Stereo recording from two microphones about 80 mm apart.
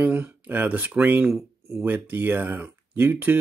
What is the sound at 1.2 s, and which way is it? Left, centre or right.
Speech, centre.